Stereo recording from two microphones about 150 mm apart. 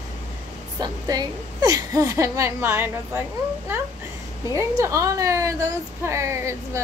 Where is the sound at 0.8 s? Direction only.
25° right (ahead or behind).